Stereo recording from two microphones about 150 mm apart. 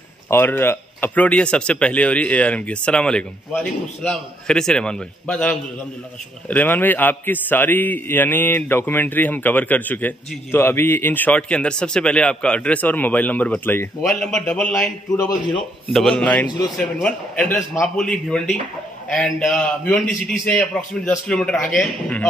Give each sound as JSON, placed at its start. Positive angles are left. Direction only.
{"t": 0.3, "sound": "a man's voice", "side_deg": 15}
{"t": 15.1, "sound": "speech", "side_deg": 25}
{"t": 15.9, "sound": "a man's voice", "side_deg": 5}